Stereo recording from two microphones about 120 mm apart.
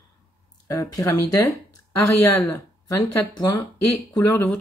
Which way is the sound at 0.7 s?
30° left (ahead or behind).